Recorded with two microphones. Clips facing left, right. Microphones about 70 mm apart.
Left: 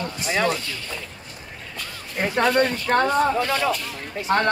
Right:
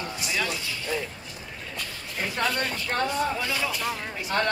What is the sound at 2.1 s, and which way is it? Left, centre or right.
Speech, left.